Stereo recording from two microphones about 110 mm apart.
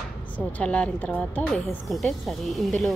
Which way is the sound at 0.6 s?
10° left (ahead or behind).